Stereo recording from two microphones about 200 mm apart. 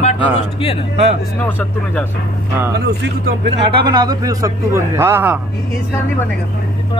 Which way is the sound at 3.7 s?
20° right (ahead or behind).